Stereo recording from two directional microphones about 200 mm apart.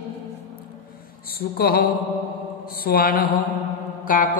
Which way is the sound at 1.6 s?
50° left (ahead or behind).